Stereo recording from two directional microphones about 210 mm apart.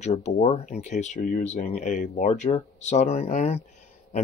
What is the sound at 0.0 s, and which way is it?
Speech, 30° left (ahead or behind).